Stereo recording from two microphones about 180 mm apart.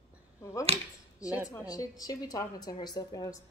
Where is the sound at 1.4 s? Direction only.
20° left (ahead or behind).